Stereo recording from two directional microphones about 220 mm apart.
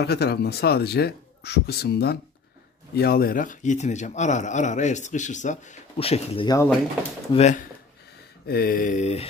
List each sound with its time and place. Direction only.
0.0 s speech: 50° left (ahead or behind); by 6.7 s 20° left (ahead or behind)
7.3 s speech: 30° left (ahead or behind)
8.5 s speech: 45° left (ahead or behind)